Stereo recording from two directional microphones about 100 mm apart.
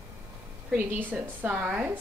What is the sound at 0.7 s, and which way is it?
A woman's voice, 20° right (ahead or behind).